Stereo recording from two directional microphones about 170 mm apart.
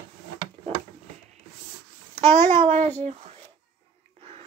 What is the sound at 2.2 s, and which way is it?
Speech, 40° right (ahead or behind).